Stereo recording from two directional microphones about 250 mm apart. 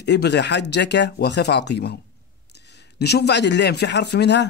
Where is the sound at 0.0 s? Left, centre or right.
Left.